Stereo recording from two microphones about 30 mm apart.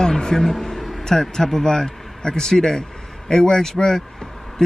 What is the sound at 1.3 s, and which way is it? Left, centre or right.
Speech, centre.